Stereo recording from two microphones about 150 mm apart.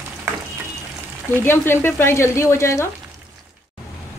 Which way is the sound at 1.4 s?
15° left (ahead or behind).